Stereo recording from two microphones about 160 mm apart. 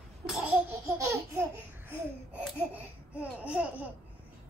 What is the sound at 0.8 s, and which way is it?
Laughter, 20° right (ahead or behind).